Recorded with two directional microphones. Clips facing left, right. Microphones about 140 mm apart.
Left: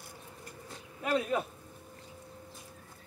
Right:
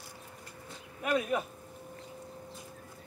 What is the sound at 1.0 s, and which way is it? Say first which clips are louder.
Speech: even; 25° left (ahead or behind).